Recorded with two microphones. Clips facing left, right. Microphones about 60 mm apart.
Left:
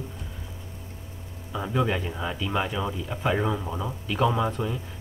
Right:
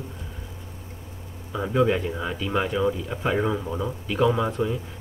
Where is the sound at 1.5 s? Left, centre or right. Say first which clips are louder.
Right 4 dB; centre.